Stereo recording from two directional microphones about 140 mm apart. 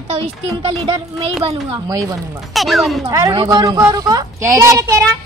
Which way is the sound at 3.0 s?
30° right (ahead or behind).